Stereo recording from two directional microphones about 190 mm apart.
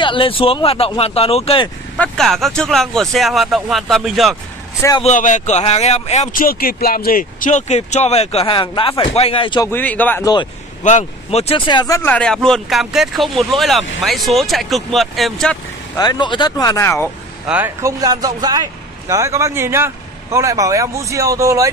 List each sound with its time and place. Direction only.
0.0 s speech: 25° left (ahead or behind)
2.0 s speech: centre (ahead or behind)
5.0 s speech: 40° left (ahead or behind)
9.7 s speech: 10° left (ahead or behind)
10.2 s speech: 25° left (ahead or behind)
10.8 s speech: 40° left (ahead or behind); by 15.5 s centre (ahead or behind)
16.0 s speech: 25° left (ahead or behind)
17.5 s speech: 10° right (ahead or behind)